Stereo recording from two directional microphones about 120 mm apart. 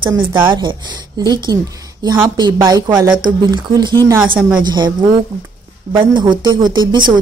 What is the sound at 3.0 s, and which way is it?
A woman's voice, 35° right (ahead or behind).